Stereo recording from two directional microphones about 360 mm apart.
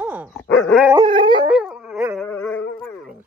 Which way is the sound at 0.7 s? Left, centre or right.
Centre.